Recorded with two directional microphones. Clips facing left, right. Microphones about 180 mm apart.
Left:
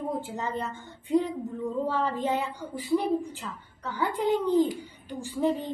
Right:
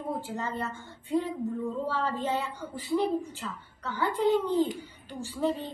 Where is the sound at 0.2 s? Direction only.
20° left (ahead or behind).